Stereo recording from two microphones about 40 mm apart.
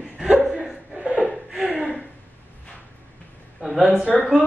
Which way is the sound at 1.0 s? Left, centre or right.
Right.